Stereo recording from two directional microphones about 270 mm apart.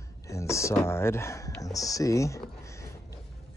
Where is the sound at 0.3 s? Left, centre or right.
Centre.